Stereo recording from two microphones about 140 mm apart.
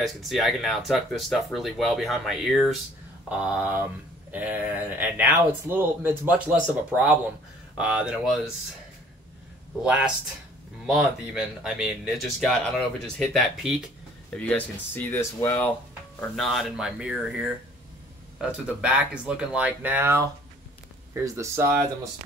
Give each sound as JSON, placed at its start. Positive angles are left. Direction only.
{"t": 0.0, "sound": "speech", "side_deg": 0}
{"t": 9.8, "sound": "speech", "side_deg": -5}
{"t": 15.0, "sound": "speech", "side_deg": 20}
{"t": 16.3, "sound": "speech", "side_deg": 0}